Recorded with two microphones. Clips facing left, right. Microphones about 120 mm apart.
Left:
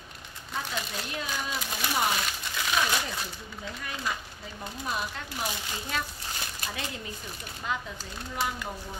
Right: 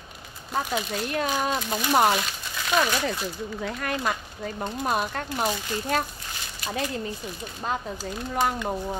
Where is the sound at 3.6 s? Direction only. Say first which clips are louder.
Right 7 dB; 70° right (ahead or behind); by 6.0 s 50° right (ahead or behind).